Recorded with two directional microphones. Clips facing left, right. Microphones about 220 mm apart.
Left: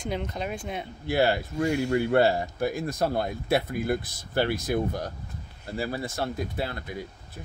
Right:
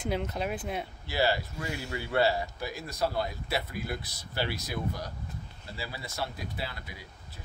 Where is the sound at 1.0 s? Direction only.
55° left (ahead or behind).